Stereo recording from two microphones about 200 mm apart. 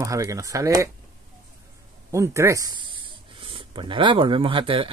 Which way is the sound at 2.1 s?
15° right (ahead or behind).